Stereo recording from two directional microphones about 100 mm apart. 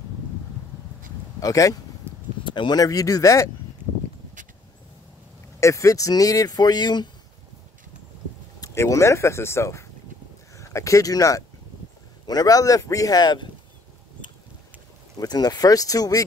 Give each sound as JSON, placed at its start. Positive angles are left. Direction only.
{"t": 1.4, "sound": "speech", "side_deg": 35}
{"t": 2.1, "sound": "a sound", "side_deg": -25}
{"t": 2.4, "sound": "speech", "side_deg": 50}
{"t": 5.6, "sound": "speech", "side_deg": 30}
{"t": 8.5, "sound": "speech", "side_deg": 30}
{"t": 15.1, "sound": "speech", "side_deg": 40}